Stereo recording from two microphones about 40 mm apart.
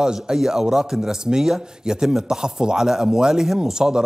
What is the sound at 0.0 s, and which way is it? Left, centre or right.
A man's voice, centre.